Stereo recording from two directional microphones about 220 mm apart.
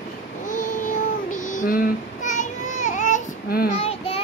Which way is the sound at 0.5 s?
35° left (ahead or behind).